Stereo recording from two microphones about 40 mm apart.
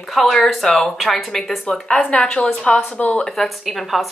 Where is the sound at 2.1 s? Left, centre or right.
Left.